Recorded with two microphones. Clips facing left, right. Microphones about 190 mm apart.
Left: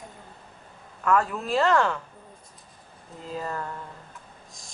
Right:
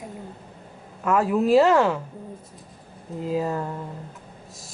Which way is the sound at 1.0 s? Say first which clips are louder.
Right 4 dB; 5° right (ahead or behind).